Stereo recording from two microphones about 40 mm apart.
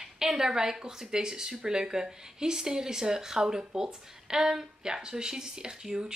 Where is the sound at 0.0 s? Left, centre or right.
Centre.